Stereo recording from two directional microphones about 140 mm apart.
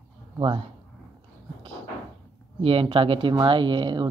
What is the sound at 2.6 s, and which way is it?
Speech, 45° right (ahead or behind).